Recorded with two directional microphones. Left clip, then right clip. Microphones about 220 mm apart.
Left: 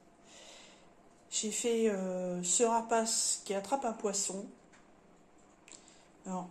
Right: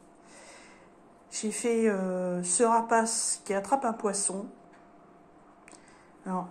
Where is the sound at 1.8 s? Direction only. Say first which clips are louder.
Right 5 dB; 5° right (ahead or behind).